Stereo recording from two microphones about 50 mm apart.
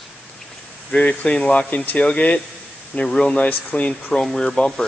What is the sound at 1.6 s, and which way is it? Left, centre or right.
Speech, left.